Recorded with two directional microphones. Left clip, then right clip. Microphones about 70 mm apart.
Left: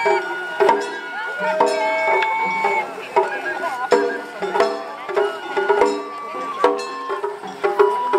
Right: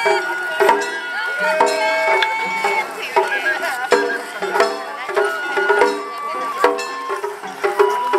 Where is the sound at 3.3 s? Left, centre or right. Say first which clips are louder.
Right 5 dB; right.